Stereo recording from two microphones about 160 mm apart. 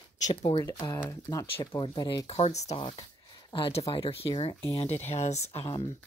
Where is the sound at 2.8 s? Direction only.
30° left (ahead or behind).